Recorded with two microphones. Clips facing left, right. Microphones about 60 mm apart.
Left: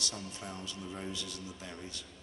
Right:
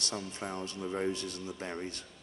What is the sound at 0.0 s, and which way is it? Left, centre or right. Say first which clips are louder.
Speech: right 4 dB; right.